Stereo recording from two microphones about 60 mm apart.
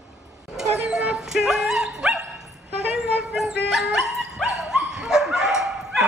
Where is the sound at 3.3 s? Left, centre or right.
Centre.